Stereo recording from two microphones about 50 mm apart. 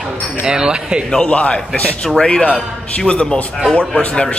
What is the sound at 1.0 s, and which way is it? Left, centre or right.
A man's voice, centre.